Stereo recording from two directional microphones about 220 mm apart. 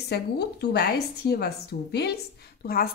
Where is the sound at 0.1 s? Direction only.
50° left (ahead or behind).